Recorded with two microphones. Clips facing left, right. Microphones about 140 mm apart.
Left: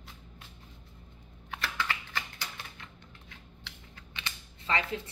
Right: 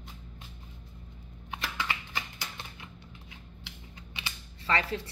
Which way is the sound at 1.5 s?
15° right (ahead or behind).